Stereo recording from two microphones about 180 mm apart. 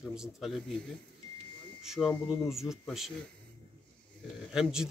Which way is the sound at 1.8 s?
Centre (ahead or behind).